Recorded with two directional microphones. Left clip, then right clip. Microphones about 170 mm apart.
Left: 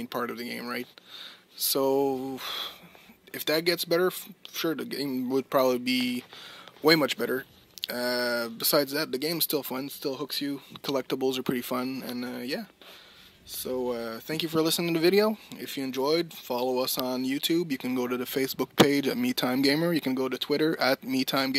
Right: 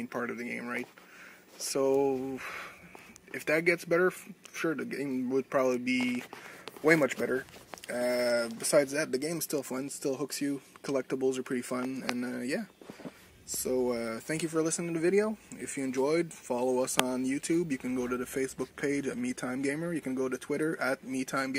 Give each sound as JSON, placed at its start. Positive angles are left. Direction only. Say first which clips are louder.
{"t": 0.1, "sound": "speech", "louder": "left 4 dB", "side_deg": 30}
{"t": 1.9, "sound": "speech", "louder": "left 1 dB", "side_deg": 50}
{"t": 2.1, "sound": "speech", "louder": "left 2 dB", "side_deg": 30}
{"t": 3.3, "sound": "speech", "louder": "left 1 dB", "side_deg": 40}
{"t": 5.9, "sound": "speech", "louder": "left 3 dB", "side_deg": 50}
{"t": 7.2, "sound": "speech", "louder": "left 2 dB", "side_deg": 35}
{"t": 12.4, "sound": "speech", "louder": "left 1 dB", "side_deg": 20}
{"t": 13.7, "sound": "speech", "louder": "even", "side_deg": 20}
{"t": 14.4, "sound": "speech", "louder": "left 6 dB", "side_deg": 40}
{"t": 15.0, "sound": "speech", "louder": "left 4 dB", "side_deg": 30}